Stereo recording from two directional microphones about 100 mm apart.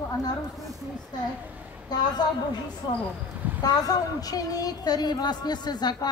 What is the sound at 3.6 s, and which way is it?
A woman's voice, 40° left (ahead or behind).